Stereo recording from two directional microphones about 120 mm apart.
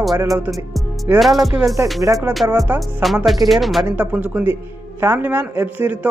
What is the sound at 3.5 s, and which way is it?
Music, centre (ahead or behind).